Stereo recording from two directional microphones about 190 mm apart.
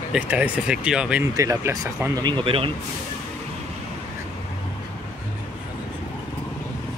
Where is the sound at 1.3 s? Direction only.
15° right (ahead or behind).